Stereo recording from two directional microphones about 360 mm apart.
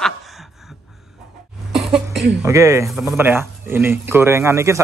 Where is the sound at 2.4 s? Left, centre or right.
Centre.